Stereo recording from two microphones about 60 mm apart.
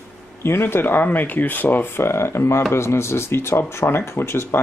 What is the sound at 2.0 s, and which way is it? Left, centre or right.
Speech, left.